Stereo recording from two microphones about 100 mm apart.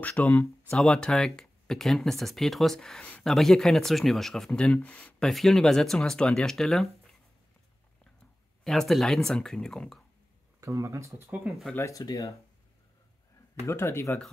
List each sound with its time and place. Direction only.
0.0 s speech: 15° left (ahead or behind)
5.3 s speech: centre (ahead or behind)
8.6 s speech: 5° left (ahead or behind)
10.6 s speech: 30° right (ahead or behind)
11.4 s speech: centre (ahead or behind)
11.7 s speech: 30° left (ahead or behind)
13.7 s speech: 25° left (ahead or behind)